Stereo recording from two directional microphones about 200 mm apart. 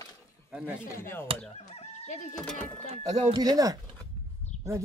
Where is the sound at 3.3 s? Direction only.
20° right (ahead or behind).